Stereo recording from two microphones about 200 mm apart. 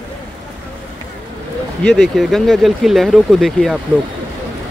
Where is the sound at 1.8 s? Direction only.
Centre (ahead or behind).